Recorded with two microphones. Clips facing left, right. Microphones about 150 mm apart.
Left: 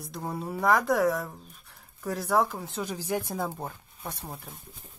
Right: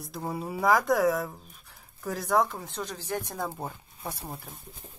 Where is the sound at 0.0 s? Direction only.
Centre (ahead or behind).